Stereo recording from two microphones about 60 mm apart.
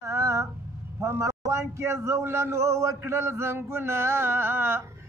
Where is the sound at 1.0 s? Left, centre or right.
Right.